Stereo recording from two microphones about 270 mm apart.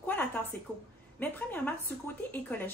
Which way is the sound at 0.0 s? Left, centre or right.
Centre.